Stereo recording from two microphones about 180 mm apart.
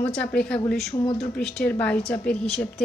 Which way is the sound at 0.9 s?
30° left (ahead or behind).